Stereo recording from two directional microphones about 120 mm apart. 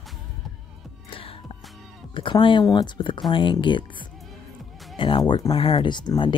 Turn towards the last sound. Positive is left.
turn(degrees=35)  # may be behind; listen again after turning